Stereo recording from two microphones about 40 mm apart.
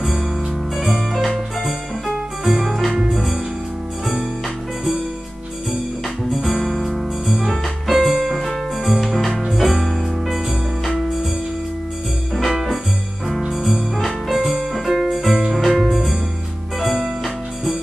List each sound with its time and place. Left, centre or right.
0.0 s music: centre
2.9 s music: centre
4.0 s music: centre
6.3 s music: centre
9.3 s music: centre
9.6 s music: centre
13.5 s music: centre